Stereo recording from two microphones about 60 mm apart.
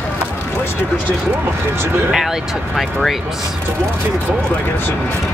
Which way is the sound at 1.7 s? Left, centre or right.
Right.